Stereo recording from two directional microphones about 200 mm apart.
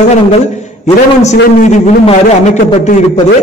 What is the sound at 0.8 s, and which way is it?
Speech, 35° left (ahead or behind).